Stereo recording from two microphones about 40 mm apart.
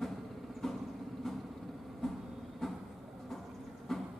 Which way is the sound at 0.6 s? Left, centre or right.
Centre.